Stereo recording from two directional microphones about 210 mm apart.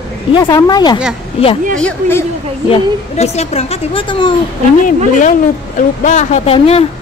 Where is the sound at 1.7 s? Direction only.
10° left (ahead or behind).